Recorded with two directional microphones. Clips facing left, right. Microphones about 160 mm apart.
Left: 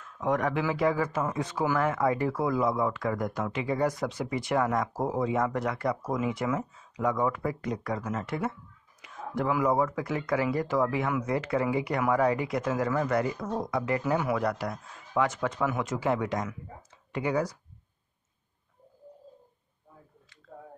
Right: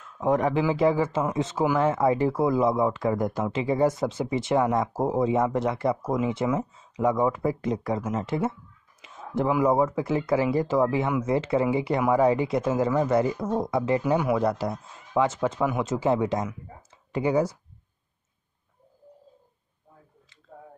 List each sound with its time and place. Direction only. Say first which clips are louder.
0.2 s speech: right 5 dB; 25° right (ahead or behind)